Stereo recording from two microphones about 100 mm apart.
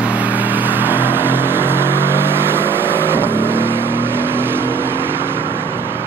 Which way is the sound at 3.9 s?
20° right (ahead or behind).